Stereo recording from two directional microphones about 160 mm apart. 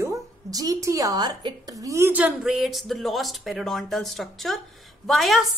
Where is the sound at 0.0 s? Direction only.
20° right (ahead or behind).